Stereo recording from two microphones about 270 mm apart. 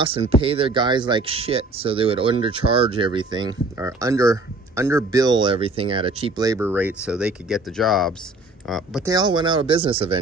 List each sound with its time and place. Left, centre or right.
0.0 s speech: centre
9.0 s speech: centre